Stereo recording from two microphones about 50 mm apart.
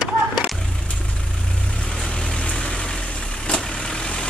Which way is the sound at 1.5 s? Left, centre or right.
Left.